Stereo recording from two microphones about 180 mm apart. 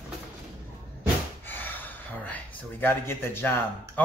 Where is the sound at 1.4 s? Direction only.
10° left (ahead or behind).